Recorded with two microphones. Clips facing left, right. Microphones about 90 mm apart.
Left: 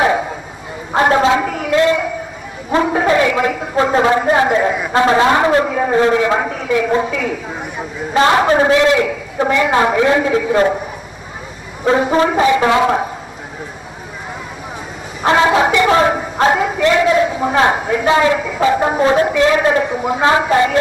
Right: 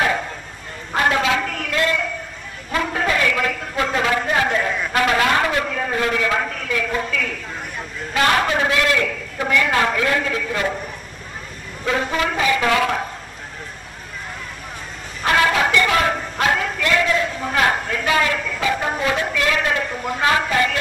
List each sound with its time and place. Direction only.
0.0 s a sound: 15° left (ahead or behind)
0.9 s a sound: 30° left (ahead or behind)
1.4 s a sound: 15° left (ahead or behind)
4.9 s a man's voice: 25° left (ahead or behind); by 8.1 s 10° left (ahead or behind)
8.1 s a man's voice: 25° left (ahead or behind)
10.5 s a man's voice: 35° left (ahead or behind)
12.4 s a man's voice: 25° left (ahead or behind)
15.2 s a man's voice: 25° left (ahead or behind)
19.9 s a woman's voice: 10° left (ahead or behind)
20.2 s a man's voice: 25° left (ahead or behind)